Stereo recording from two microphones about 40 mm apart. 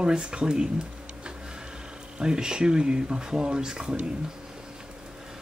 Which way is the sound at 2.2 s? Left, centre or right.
Centre.